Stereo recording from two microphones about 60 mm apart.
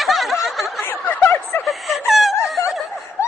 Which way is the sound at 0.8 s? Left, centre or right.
Left.